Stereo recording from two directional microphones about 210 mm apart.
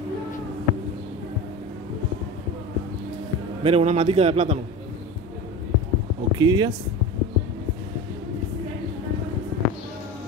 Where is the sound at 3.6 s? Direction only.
30° right (ahead or behind).